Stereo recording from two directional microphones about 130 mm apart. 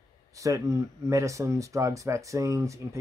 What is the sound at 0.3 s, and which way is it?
Speech, 25° right (ahead or behind).